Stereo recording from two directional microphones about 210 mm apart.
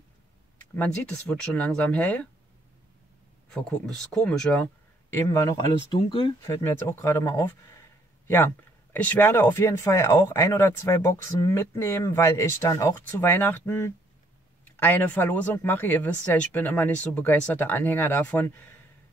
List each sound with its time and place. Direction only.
0.7 s speech: 5° left (ahead or behind)
3.5 s speech: 5° left (ahead or behind)
8.9 s speech: 10° left (ahead or behind)